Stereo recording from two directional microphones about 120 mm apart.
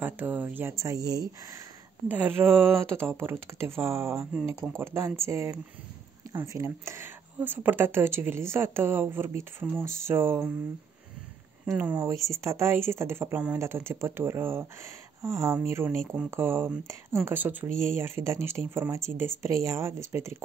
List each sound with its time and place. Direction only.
0.0 s speech: 15° right (ahead or behind)
2.0 s speech: 15° right (ahead or behind)
12.0 s speech: 25° right (ahead or behind)